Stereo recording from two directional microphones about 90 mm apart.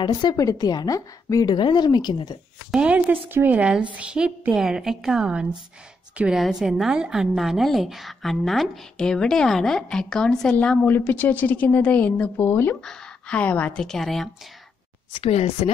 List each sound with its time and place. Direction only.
0.0 s a woman's voice: 50° left (ahead or behind)
0.4 s a woman's voice: 40° left (ahead or behind)
1.5 s a woman's voice: 55° left (ahead or behind)
2.7 s a woman's voice: 15° right (ahead or behind); by 13.8 s 15° left (ahead or behind)
13.8 s a woman's voice: 5° left (ahead or behind)